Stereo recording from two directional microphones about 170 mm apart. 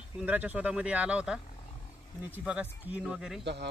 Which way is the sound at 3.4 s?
85° right.